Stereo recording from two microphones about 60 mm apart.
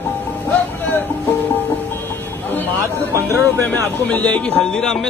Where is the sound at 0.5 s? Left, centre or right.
Left.